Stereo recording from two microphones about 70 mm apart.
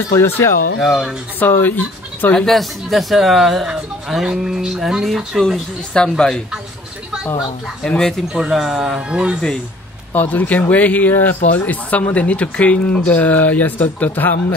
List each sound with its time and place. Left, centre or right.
0.2 s speech: left
0.7 s speech: centre
1.4 s speech: left
2.4 s speech: centre
7.9 s speech: centre
8.3 s speech: centre
10.1 s speech: left